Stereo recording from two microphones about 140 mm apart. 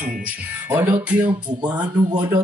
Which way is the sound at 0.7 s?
15° right (ahead or behind).